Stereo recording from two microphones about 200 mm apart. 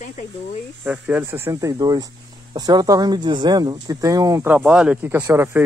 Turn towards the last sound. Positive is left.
turn(degrees=-10)  # may be behind; listen again after turning